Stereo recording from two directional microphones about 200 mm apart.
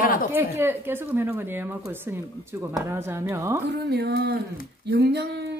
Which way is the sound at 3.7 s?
55° right (ahead or behind).